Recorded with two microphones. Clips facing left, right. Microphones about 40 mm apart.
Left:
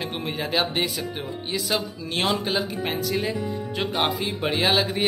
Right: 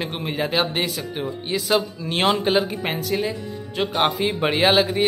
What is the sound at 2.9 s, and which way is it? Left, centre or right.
A woman's voice, centre.